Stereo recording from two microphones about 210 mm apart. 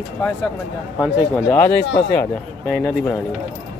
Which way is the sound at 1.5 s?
10° left (ahead or behind).